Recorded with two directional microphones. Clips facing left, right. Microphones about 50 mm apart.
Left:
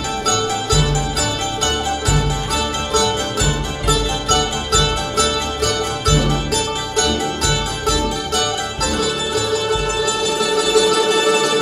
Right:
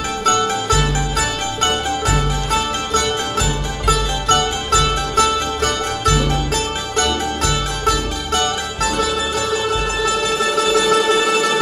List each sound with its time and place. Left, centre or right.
0.2 s music: right
7.8 s music: right